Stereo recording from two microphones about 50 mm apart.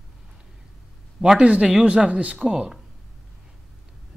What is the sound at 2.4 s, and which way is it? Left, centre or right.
Speech, centre.